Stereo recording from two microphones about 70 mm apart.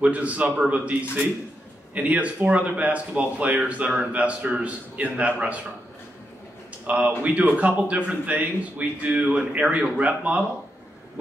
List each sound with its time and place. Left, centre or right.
0.0 s a man's voice: right
2.0 s speech: right
6.9 s speech: right